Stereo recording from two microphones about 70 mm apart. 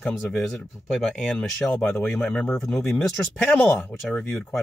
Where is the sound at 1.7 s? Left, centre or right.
Left.